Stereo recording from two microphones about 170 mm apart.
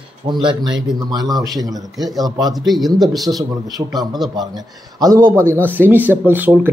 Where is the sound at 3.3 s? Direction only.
20° right (ahead or behind).